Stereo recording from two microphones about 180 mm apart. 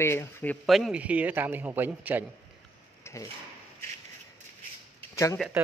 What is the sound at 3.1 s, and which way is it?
Drawer open or close, 15° left (ahead or behind).